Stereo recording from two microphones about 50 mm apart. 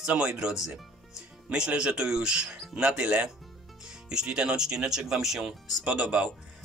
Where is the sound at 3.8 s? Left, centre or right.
Centre.